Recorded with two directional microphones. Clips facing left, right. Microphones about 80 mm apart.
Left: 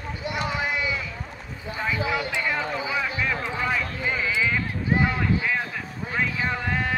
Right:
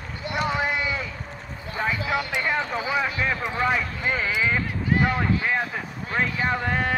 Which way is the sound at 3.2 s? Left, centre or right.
Right.